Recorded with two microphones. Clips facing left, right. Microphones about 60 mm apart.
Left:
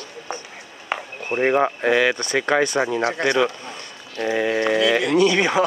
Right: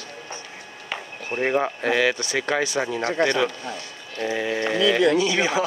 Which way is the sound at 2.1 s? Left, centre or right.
Left.